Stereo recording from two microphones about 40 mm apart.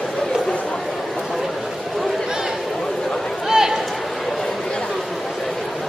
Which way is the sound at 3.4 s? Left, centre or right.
Centre.